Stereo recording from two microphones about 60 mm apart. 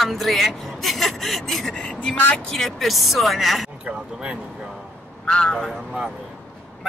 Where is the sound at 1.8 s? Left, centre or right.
Left.